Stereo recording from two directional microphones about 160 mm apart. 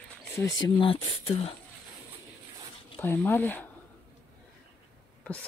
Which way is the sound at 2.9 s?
15° left (ahead or behind).